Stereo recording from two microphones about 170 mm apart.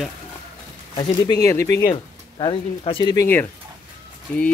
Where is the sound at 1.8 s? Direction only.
30° left (ahead or behind).